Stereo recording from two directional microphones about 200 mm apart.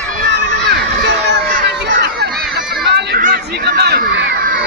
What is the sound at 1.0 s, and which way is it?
Crowd, 60° right (ahead or behind).